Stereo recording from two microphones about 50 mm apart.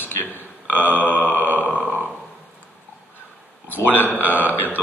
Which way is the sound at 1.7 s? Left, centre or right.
Right.